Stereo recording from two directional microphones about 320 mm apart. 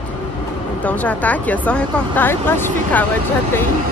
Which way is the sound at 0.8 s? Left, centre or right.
Centre.